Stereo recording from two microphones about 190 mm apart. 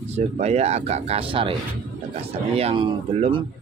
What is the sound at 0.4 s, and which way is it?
Speech, 35° right (ahead or behind).